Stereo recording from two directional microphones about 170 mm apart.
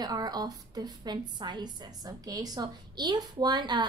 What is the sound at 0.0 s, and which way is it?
A woman's voice, 25° right (ahead or behind).